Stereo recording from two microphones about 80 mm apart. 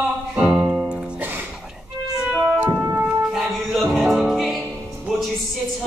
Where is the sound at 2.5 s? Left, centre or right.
Right.